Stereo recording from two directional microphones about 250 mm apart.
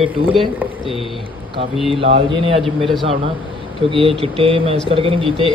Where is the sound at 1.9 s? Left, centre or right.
Right.